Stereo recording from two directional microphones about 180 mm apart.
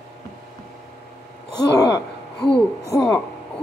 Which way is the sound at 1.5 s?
20° left (ahead or behind).